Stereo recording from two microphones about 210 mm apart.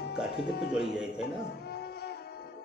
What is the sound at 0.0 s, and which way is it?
Speech, 50° left (ahead or behind).